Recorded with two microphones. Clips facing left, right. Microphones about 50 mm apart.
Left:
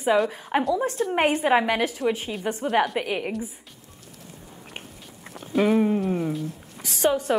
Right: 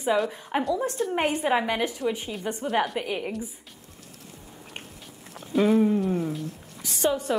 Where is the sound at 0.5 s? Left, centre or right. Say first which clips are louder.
Left 3 dB; left.